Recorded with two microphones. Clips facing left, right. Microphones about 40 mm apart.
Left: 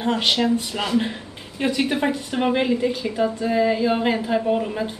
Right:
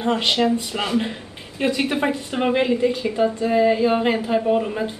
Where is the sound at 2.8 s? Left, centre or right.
Centre.